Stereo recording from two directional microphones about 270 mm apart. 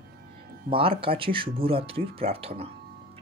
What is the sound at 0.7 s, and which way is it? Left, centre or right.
Speech, centre.